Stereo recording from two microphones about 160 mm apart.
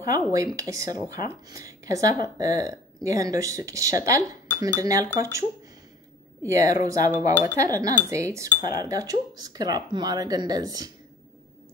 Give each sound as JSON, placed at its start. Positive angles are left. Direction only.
{"t": 0.0, "sound": "speech", "side_deg": -20}
{"t": 6.4, "sound": "speech", "side_deg": -20}